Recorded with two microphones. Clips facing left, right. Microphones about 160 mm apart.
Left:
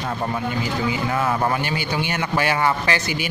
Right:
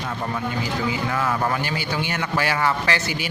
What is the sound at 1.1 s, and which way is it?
Speech, 25° left (ahead or behind).